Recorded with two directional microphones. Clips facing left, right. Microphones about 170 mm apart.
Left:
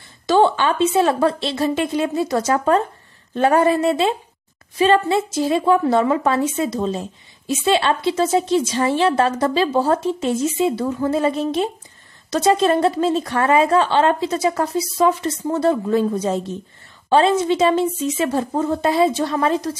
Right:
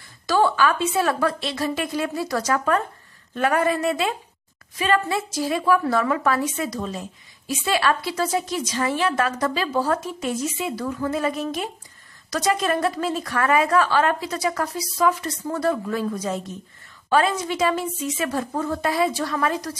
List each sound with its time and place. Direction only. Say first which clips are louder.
0.3 s a woman's voice: left 4 dB; 25° left (ahead or behind)